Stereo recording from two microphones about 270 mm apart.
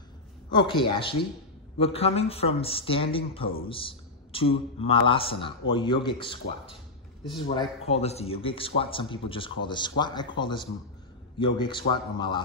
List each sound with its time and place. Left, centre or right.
0.5 s a man's voice: centre